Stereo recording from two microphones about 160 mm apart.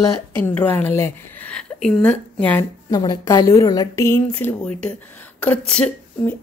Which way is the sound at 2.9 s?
25° left (ahead or behind).